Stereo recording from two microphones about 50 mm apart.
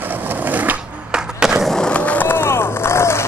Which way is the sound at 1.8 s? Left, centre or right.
Left.